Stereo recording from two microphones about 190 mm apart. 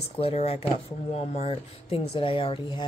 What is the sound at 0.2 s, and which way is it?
Speech, 35° left (ahead or behind).